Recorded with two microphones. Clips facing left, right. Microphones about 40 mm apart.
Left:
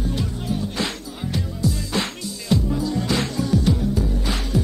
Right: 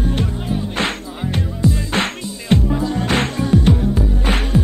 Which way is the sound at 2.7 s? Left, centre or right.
Right.